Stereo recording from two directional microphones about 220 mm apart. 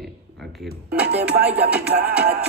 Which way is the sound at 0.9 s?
5° right (ahead or behind).